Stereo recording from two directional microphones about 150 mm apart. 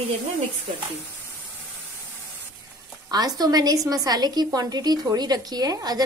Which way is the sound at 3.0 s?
25° right (ahead or behind).